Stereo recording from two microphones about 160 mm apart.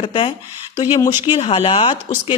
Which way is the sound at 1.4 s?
40° left (ahead or behind).